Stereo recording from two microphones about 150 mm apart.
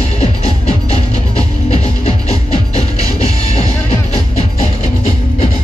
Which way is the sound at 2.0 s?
40° left (ahead or behind).